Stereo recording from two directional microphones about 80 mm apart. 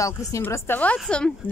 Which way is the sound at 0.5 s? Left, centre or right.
Left.